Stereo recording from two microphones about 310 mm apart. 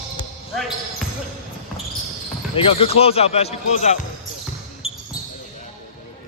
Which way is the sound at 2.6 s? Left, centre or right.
Centre.